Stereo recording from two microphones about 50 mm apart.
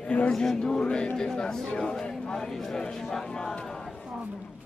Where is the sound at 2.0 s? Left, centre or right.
Centre.